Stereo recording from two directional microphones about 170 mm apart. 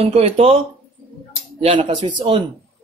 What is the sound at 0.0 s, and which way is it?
Speech, 35° right (ahead or behind).